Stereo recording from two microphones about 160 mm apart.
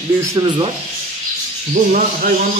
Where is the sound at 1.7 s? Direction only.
55° right (ahead or behind).